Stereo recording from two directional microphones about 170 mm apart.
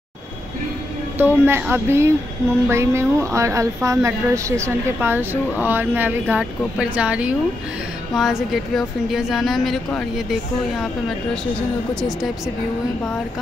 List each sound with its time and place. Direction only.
1.1 s speech: 15° right (ahead or behind)
11.9 s speech: 5° left (ahead or behind)